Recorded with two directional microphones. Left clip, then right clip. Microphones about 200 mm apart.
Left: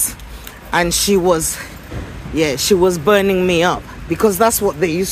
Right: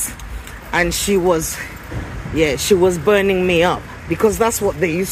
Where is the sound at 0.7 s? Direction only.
15° left (ahead or behind).